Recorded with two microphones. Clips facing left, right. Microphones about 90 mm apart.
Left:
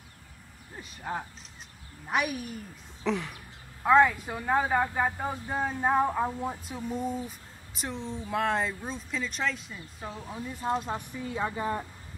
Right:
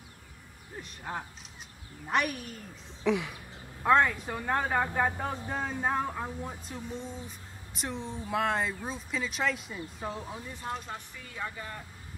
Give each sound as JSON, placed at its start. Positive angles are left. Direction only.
{"t": 0.7, "sound": "speech", "side_deg": 0}
{"t": 10.6, "sound": "speech", "side_deg": 10}
{"t": 11.1, "sound": "a woman's voice", "side_deg": 25}